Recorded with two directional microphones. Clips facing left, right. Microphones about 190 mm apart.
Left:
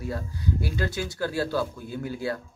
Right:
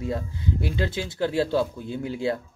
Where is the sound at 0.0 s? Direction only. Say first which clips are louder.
Right 3 dB; 25° right (ahead or behind).